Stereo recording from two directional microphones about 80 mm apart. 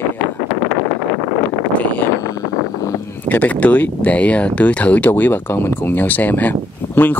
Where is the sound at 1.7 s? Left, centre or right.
Centre.